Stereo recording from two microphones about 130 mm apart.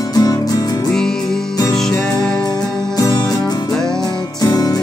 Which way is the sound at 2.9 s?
25° left (ahead or behind).